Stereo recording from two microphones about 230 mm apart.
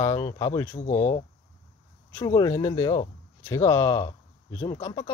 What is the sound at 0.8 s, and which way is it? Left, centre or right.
Speech, left.